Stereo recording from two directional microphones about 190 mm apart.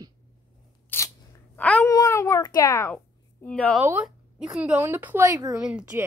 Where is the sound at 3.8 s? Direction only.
10° right (ahead or behind).